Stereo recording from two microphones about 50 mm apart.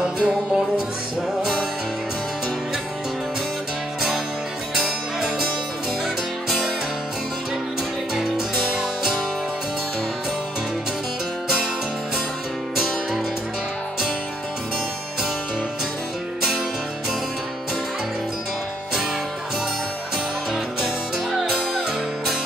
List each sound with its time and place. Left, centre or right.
0.0 s music: centre
4.7 s music: centre
8.1 s music: centre
20.5 s music: centre